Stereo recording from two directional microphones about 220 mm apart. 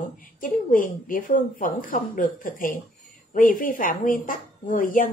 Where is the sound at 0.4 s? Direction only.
40° left (ahead or behind).